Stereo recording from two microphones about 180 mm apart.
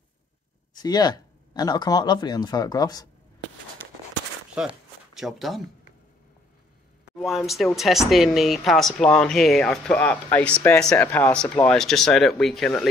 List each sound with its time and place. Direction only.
0.7 s speech: 25° left (ahead or behind)
4.6 s speech: centre (ahead or behind)
7.2 s speech: centre (ahead or behind)